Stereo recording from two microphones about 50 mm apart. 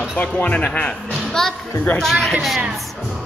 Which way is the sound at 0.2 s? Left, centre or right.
Left.